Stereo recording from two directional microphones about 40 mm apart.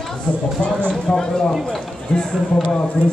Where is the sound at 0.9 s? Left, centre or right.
Centre.